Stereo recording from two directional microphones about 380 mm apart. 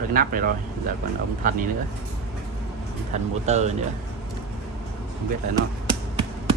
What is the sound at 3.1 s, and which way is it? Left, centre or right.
Speech, centre.